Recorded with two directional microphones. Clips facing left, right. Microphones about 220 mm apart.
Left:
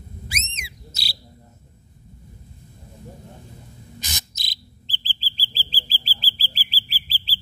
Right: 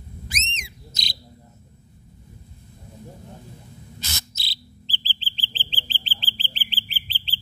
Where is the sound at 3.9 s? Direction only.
15° left (ahead or behind).